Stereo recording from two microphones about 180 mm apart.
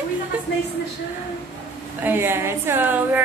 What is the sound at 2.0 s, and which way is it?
A woman's voice, 10° right (ahead or behind).